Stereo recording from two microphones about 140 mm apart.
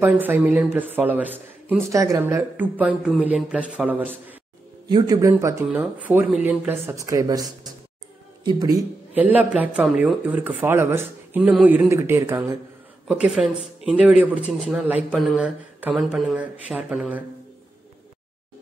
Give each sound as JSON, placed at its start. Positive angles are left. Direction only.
{"t": 0.0, "sound": "speech", "side_deg": -15}
{"t": 4.8, "sound": "speech", "side_deg": -30}
{"t": 9.1, "sound": "speech", "side_deg": -10}
{"t": 13.1, "sound": "speech", "side_deg": -5}